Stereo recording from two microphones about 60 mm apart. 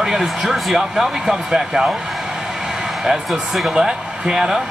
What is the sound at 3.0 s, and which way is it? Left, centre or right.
Speech, centre.